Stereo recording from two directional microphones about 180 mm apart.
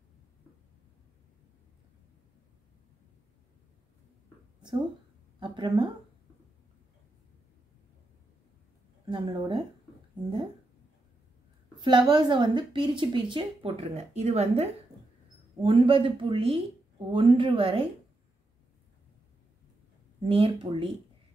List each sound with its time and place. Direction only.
5.4 s a woman's voice: 25° right (ahead or behind)
9.1 s a woman's voice: 25° right (ahead or behind)
11.8 s a woman's voice: 25° right (ahead or behind)
20.2 s speech: 30° right (ahead or behind)